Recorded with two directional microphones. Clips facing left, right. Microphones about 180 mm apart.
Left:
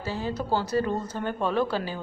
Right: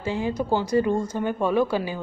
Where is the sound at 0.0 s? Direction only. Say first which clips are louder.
Right 5 dB; 15° right (ahead or behind).